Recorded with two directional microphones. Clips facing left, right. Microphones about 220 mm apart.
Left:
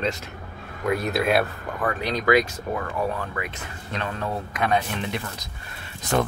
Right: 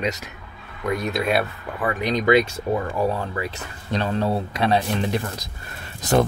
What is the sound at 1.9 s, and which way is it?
Speech, 20° right (ahead or behind).